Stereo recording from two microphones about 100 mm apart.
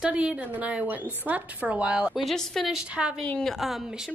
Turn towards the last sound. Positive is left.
turn(degrees=-5)  # may be behind; listen again after turning